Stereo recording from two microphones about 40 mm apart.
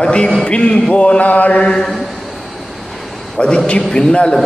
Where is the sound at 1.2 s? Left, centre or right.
Left.